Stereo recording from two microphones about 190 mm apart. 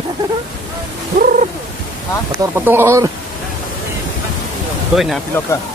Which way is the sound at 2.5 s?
10° right (ahead or behind).